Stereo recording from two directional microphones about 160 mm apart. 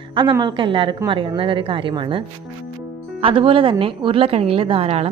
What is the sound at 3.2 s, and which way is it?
A woman's voice, 35° right (ahead or behind).